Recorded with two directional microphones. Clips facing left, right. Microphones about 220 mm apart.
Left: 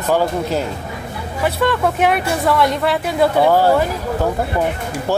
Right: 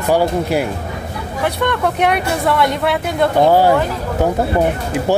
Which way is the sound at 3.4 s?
15° right (ahead or behind).